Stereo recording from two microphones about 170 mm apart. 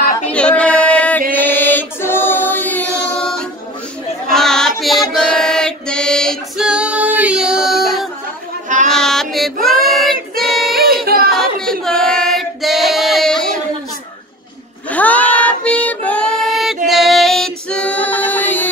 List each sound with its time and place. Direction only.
0.3 s a sound: 5° left (ahead or behind)
1.3 s choir: 10° left (ahead or behind)
4.3 s female singing: 5° left (ahead or behind)
8.8 s child singing: 5° left (ahead or behind)
10.3 s female singing: centre (ahead or behind)
11.1 s a sound: 65° right (ahead or behind)
11.8 s female singing: 5° left (ahead or behind)
14.9 s music: 10° left (ahead or behind)